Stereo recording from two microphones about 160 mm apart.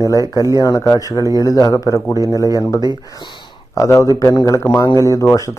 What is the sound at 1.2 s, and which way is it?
Speech, 20° right (ahead or behind).